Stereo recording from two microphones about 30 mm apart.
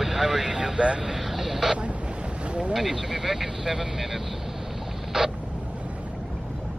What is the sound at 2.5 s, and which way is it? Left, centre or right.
Boat, right.